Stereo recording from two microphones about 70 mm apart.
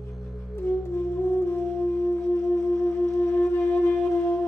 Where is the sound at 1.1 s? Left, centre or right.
Left.